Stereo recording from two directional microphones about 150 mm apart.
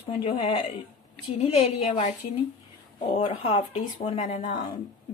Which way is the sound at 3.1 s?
35° left (ahead or behind).